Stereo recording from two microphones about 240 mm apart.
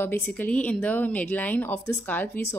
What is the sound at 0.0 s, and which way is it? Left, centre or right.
A woman's voice, centre.